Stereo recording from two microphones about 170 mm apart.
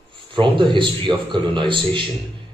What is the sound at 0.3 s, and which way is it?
A man's voice, 30° right (ahead or behind).